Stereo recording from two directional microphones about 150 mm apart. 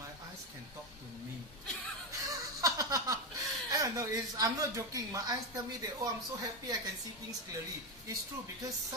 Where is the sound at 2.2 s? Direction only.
25° right (ahead or behind).